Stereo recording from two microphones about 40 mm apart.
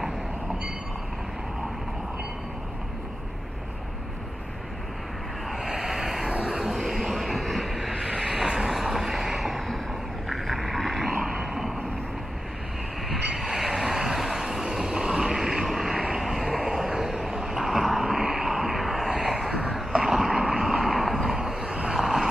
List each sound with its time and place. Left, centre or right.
5.6 s vehicle: centre
6.9 s a sound: centre
8.2 s vehicle: centre
10.3 s a sound: centre
13.3 s train: centre
13.7 s vehicle: centre
18.2 s a sound: centre
18.8 s vehicle: centre
19.5 s vehicle: right